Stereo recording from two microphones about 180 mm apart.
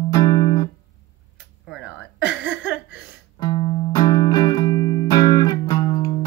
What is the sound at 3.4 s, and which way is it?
Music, 30° left (ahead or behind).